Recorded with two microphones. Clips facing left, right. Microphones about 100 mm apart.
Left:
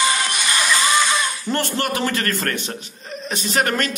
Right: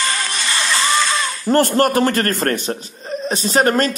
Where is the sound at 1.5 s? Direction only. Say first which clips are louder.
Right 10 dB; 45° right (ahead or behind).